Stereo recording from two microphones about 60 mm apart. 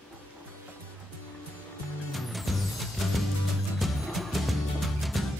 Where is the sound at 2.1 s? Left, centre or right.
Centre.